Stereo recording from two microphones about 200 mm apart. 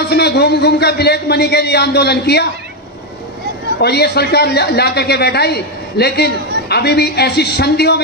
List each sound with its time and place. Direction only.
0.1 s a man's voice: 55° left (ahead or behind)
3.8 s a man's voice: 55° left (ahead or behind)